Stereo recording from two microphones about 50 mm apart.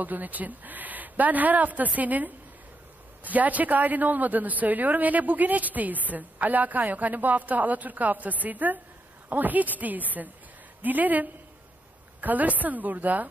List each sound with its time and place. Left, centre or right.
0.0 s a man's voice: right